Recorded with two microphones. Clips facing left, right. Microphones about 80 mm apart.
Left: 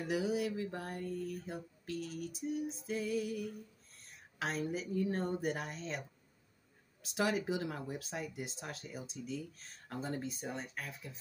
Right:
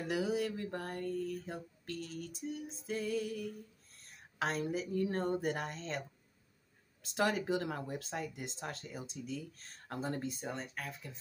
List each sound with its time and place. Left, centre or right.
0.1 s music: centre
0.6 s a sound: right
0.8 s music: centre
7.2 s music: centre